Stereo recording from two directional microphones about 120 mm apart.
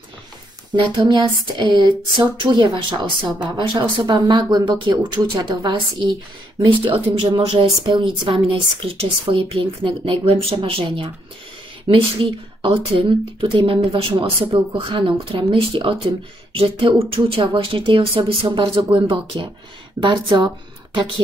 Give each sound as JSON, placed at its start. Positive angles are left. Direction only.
{"t": 0.7, "sound": "speech", "side_deg": -40}